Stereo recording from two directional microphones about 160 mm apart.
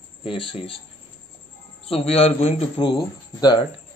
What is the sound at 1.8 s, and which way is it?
Speech, 40° left (ahead or behind).